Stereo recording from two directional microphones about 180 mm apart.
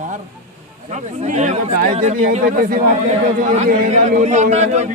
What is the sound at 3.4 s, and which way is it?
A man's voice, 40° right (ahead or behind).